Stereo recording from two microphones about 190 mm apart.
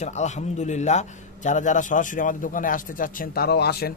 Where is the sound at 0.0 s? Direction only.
35° left (ahead or behind).